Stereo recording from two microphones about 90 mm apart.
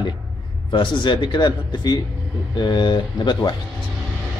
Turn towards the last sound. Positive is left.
turn(degrees=55)  # may be behind; listen again after turning